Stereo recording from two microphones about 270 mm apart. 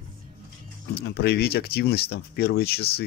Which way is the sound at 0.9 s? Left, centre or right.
Left.